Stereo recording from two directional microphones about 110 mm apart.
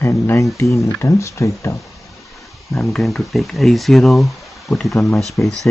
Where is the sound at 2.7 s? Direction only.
Centre (ahead or behind).